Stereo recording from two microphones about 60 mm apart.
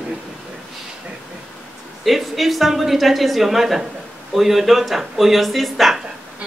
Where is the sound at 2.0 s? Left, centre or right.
Centre.